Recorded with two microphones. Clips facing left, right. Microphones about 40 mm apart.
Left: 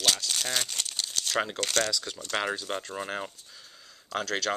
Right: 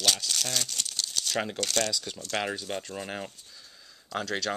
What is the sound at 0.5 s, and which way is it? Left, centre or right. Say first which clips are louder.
Speech: left 1 dB; left.